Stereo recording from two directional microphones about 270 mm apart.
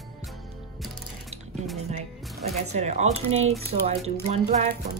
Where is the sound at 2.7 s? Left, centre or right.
Right.